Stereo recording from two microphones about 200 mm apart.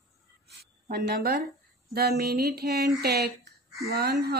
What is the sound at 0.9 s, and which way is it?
Speech, 50° right (ahead or behind).